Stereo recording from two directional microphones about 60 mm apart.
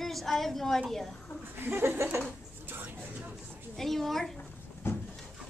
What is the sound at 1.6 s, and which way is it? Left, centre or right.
Speech, right.